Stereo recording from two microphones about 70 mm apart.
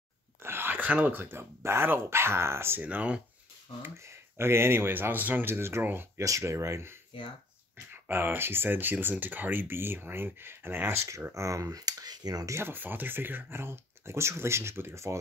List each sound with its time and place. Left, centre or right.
0.4 s a sound: right
1.6 s speech: right
2.8 s speech: right
3.8 s speech: right
6.2 s speech: right
8.1 s speech: right
11.3 s speech: right
11.7 s speech: right
12.4 s speech: right